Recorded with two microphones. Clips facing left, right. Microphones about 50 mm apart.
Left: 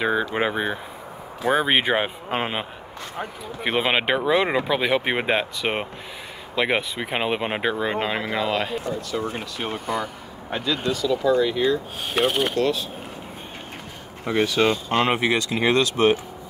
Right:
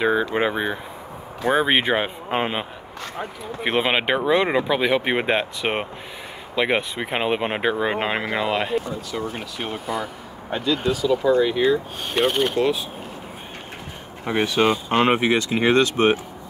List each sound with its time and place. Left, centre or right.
0.0 s speech: centre
3.6 s speech: centre
8.7 s speech: centre
12.1 s speech: centre
12.5 s speech: centre
14.2 s speech: right